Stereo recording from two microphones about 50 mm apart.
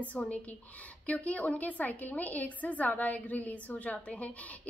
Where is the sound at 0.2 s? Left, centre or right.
Left.